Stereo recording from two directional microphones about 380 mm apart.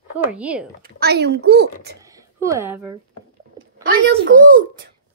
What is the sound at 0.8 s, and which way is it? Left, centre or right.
Speech, right.